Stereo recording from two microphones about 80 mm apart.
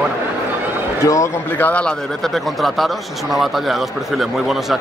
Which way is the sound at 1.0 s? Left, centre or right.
Left.